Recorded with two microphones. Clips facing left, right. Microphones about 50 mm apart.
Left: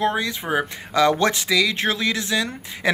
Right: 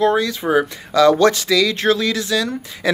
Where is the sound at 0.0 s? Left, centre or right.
Left.